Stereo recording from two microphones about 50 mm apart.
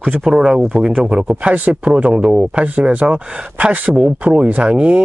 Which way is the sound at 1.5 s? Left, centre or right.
Right.